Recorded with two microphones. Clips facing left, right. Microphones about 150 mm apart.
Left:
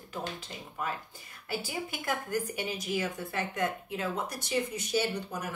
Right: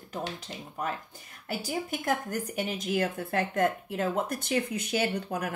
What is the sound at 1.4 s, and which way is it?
A woman's voice, 45° right (ahead or behind).